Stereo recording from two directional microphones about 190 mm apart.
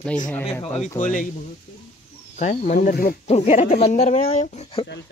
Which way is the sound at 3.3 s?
35° left (ahead or behind).